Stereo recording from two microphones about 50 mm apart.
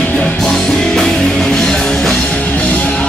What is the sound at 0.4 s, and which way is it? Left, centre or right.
Music, centre.